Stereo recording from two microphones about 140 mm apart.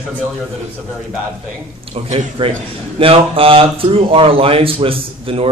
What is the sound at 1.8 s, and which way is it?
Speech, 50° right (ahead or behind).